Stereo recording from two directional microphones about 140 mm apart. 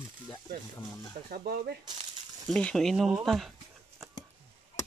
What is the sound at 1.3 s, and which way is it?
Speech, 90° right.